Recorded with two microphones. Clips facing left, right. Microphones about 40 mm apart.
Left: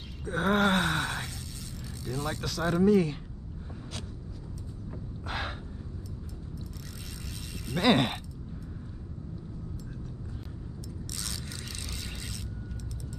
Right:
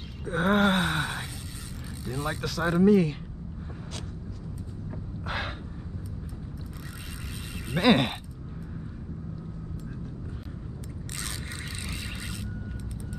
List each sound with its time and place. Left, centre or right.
0.2 s groan: centre
2.0 s speech: centre
5.2 s gasp: centre
7.5 s a sound: right
7.8 s speech: centre